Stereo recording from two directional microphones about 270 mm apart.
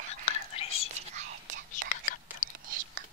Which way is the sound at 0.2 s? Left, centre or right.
Left.